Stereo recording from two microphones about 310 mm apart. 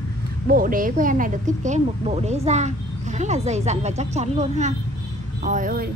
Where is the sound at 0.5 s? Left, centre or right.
Right.